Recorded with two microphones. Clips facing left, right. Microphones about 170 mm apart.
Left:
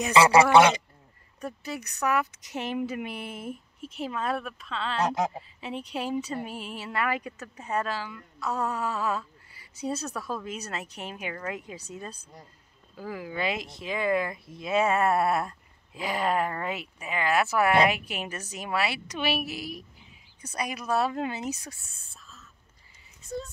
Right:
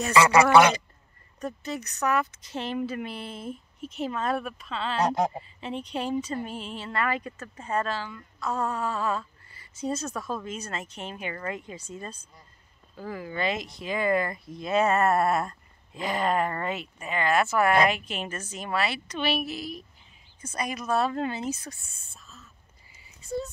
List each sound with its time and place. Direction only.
0.2 s speech: 30° left (ahead or behind)
1.4 s speech: 10° left (ahead or behind)
3.8 s a woman's voice: 5° left (ahead or behind)
21.9 s a sound: centre (ahead or behind)